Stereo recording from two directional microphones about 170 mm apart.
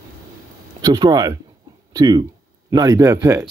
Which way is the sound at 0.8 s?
25° right (ahead or behind).